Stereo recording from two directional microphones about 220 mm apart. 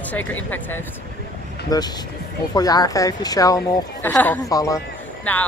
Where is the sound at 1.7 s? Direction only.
15° left (ahead or behind).